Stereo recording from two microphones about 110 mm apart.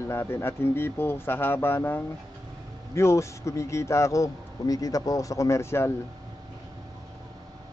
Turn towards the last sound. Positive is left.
turn(degrees=25)  # may be behind; listen again after turning